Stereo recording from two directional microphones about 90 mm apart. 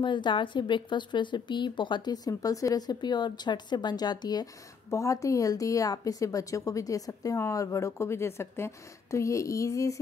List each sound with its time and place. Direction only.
0.0 s a woman's voice: 60° left (ahead or behind)
4.8 s a woman's voice: 35° left (ahead or behind)